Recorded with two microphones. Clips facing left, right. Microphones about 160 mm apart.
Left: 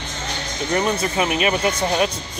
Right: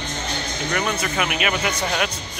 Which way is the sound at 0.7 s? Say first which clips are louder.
Left 4 dB; 30° left (ahead or behind).